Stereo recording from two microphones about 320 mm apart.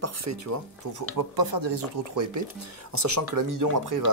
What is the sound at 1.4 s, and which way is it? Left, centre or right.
Speech, right.